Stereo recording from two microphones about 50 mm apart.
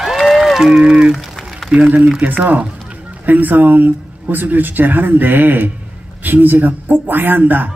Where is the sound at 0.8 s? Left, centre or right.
Right.